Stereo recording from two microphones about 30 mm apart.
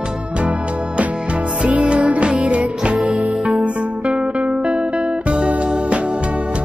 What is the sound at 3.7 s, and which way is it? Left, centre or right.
Music, right.